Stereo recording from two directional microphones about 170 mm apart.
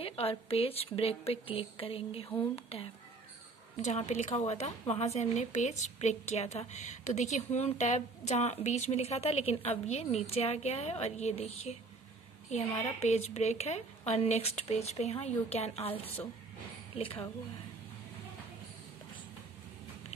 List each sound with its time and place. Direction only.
0.0 s speech: 35° left (ahead or behind)
13.0 s speech: 40° left (ahead or behind)
16.9 s speech: 35° left (ahead or behind)